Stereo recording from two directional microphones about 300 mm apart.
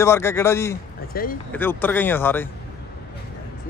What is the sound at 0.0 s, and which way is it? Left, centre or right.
Speech, centre.